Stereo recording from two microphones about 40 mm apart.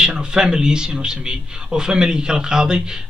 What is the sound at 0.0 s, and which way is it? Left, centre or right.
A man's voice, centre.